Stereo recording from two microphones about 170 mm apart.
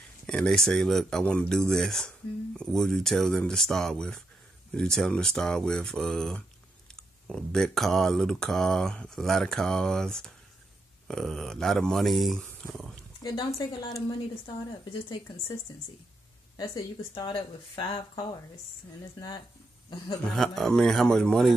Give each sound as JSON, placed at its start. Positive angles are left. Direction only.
{"t": 0.3, "sound": "speech", "side_deg": 5}
{"t": 13.2, "sound": "speech", "side_deg": 25}
{"t": 16.5, "sound": "speech", "side_deg": 20}
{"t": 20.3, "sound": "speech", "side_deg": 0}